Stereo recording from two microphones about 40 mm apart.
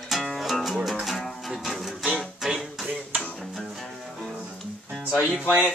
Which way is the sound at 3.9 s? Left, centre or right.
Centre.